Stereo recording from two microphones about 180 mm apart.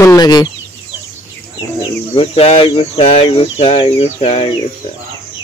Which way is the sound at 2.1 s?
35° left (ahead or behind).